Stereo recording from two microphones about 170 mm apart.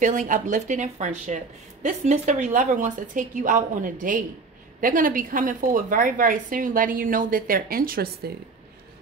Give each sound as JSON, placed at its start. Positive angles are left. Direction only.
{"t": 0.0, "sound": "speech", "side_deg": -50}